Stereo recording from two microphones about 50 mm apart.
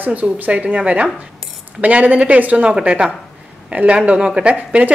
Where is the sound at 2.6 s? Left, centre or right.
Right.